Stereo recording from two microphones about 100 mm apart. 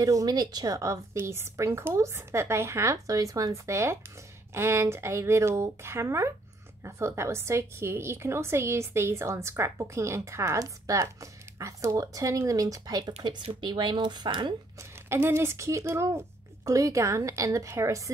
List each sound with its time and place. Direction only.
0.0 s a woman's voice: 35° right (ahead or behind)
13.2 s speech: 50° right (ahead or behind)
14.8 s a woman's voice: 25° right (ahead or behind)